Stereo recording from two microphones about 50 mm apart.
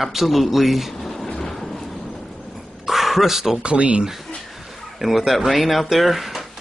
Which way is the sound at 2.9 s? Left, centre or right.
Centre.